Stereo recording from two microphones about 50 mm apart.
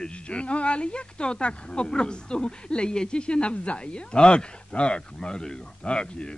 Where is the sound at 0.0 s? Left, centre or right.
Left.